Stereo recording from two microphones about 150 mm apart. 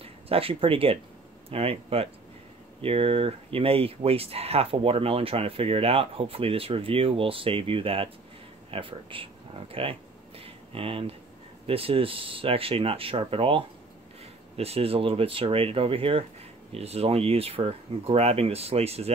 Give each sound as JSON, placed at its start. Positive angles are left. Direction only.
{"t": 0.0, "sound": "speech", "side_deg": -40}
{"t": 8.6, "sound": "a sound", "side_deg": -35}
{"t": 11.6, "sound": "speech", "side_deg": -40}